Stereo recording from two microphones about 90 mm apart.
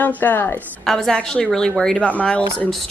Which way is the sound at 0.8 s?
5° left (ahead or behind).